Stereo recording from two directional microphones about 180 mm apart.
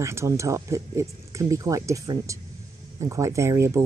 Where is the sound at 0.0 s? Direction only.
15° right (ahead or behind).